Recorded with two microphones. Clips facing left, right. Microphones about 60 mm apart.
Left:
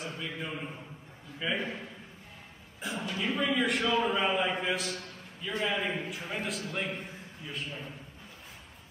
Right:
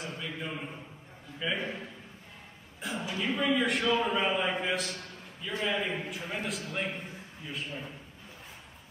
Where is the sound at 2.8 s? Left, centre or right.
Centre.